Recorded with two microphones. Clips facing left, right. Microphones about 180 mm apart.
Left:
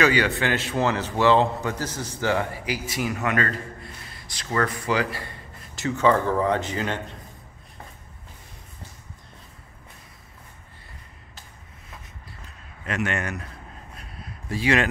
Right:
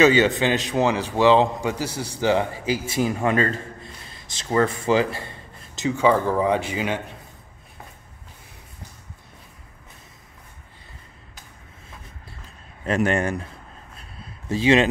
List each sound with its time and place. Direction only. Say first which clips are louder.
0.0 s a man's voice: right 5 dB; 20° right (ahead or behind)
5.8 s speech: right 1 dB; 10° right (ahead or behind)
12.8 s speech: right 6 dB; 35° right (ahead or behind)
13.9 s a sound: left 1 dB; 25° right (ahead or behind)